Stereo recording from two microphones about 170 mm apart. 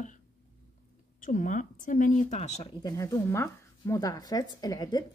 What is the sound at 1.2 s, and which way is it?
Speech, 50° left (ahead or behind).